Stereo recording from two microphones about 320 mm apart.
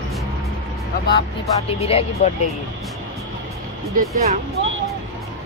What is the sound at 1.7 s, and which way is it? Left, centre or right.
Speech, centre.